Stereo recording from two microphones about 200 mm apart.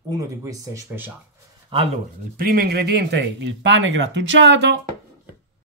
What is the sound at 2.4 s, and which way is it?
Speech, 50° right (ahead or behind).